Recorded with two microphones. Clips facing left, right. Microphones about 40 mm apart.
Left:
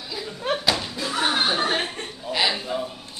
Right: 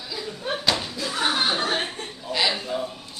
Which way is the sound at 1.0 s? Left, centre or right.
Left.